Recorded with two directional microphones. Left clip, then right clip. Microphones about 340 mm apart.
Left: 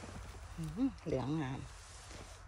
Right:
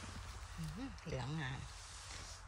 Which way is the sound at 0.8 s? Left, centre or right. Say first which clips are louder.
Left 10 dB; centre.